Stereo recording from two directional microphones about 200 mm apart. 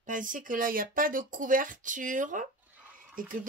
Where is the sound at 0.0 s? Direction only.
40° right (ahead or behind).